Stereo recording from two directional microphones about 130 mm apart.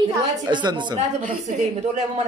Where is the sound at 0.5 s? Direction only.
35° right (ahead or behind).